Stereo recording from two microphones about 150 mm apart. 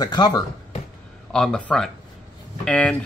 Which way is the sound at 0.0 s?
30° left (ahead or behind).